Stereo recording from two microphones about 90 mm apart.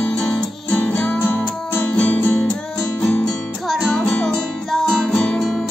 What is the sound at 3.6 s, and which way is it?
Music, centre (ahead or behind).